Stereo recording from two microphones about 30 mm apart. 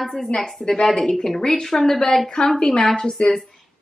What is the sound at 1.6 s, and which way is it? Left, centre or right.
Speech, centre.